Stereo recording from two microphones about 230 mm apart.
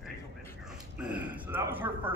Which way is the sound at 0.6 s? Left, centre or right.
Centre.